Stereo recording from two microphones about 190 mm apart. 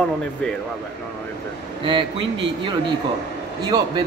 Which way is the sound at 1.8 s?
25° right (ahead or behind).